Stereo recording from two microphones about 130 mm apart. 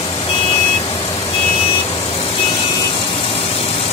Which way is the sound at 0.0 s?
45° left (ahead or behind).